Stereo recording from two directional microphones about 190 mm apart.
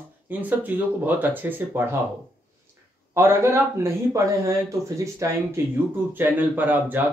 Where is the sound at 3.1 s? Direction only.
15° right (ahead or behind).